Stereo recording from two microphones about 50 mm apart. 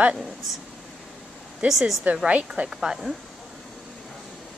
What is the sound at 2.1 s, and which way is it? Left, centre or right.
Speech, centre.